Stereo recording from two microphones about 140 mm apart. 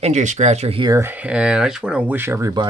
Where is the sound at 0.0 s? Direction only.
55° right (ahead or behind).